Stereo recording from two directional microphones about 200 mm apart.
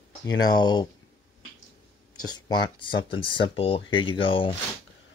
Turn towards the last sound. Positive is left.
turn(degrees=25)  # may be behind; listen again after turning